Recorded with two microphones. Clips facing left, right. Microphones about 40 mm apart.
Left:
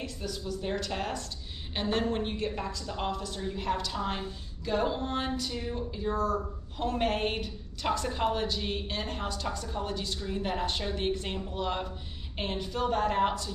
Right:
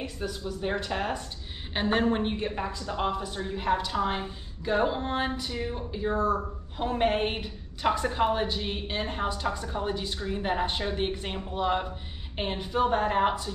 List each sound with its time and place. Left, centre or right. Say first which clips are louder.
0.0 s a woman's voice: right 3 dB; right